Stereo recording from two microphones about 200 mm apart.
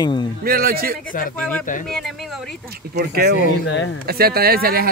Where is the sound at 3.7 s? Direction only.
65° left (ahead or behind).